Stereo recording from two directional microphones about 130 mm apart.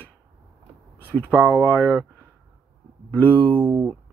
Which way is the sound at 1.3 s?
15° right (ahead or behind).